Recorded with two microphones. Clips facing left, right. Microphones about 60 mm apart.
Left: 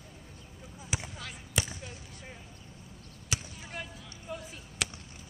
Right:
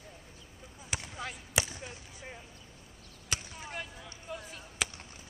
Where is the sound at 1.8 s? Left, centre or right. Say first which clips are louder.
Even; centre.